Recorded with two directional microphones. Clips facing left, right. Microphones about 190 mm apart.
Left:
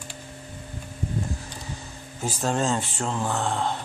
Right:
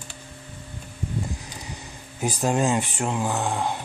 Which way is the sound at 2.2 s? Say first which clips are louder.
Right 3 dB; 15° right (ahead or behind).